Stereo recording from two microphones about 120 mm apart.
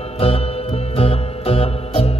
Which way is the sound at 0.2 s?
55° left (ahead or behind).